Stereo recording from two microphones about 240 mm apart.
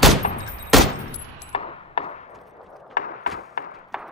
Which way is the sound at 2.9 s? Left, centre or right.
Left.